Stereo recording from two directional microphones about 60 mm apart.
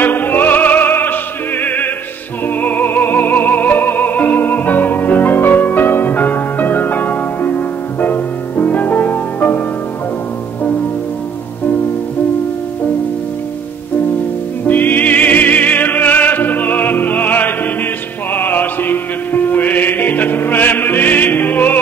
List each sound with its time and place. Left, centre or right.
0.0 s opera: left
2.4 s music: left
14.7 s music: left